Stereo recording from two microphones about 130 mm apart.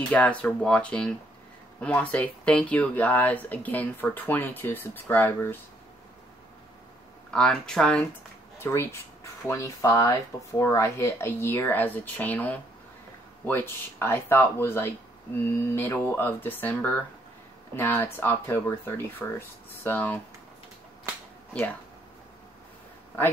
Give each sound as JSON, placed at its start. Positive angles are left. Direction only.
{"t": 0.1, "sound": "speech", "side_deg": 10}
{"t": 7.2, "sound": "speech", "side_deg": 5}
{"t": 8.5, "sound": "speech", "side_deg": 20}